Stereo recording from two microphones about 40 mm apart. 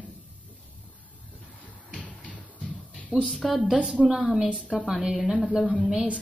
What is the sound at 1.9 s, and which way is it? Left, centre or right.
Music, left.